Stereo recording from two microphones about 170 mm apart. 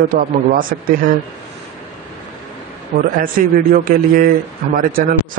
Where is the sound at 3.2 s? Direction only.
55° right (ahead or behind).